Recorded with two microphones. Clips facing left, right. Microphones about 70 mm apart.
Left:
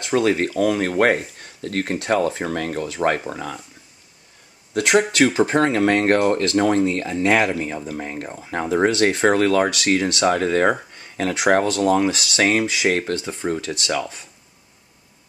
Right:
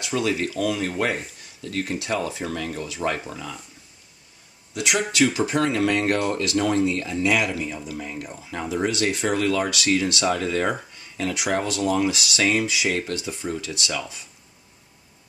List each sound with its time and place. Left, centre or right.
0.0 s speech: left
4.7 s speech: left